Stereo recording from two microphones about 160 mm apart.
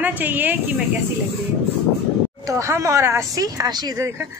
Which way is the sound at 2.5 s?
20° right (ahead or behind).